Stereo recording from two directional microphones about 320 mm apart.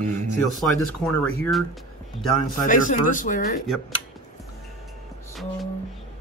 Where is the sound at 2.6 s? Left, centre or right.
Left.